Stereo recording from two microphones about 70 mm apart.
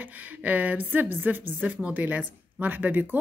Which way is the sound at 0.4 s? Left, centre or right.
Right.